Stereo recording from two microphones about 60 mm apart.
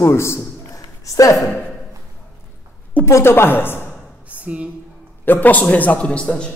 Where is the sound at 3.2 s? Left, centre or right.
Left.